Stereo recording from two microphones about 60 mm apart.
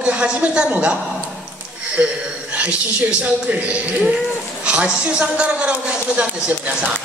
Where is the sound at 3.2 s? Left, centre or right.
Right.